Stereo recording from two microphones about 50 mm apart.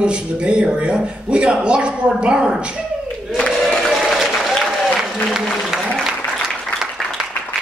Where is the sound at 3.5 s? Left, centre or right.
Centre.